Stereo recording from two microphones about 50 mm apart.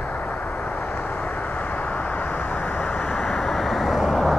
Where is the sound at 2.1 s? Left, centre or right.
Left.